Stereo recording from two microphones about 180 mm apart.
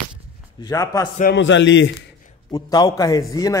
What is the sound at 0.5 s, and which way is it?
Speech, 20° left (ahead or behind).